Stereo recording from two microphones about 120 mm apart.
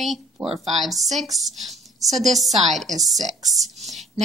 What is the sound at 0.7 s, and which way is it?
A woman's voice, centre (ahead or behind).